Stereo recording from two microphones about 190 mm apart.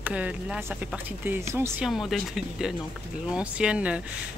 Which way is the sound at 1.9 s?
Centre (ahead or behind).